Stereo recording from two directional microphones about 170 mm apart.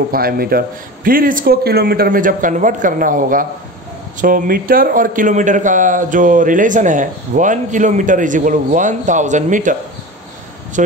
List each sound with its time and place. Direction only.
0.1 s a man's voice: 60° right (ahead or behind)